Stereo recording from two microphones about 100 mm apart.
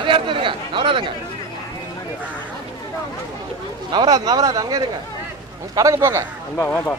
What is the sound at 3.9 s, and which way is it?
Speech, 40° right (ahead or behind).